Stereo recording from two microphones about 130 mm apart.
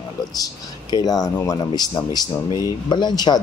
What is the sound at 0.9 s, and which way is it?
Speech, 30° left (ahead or behind).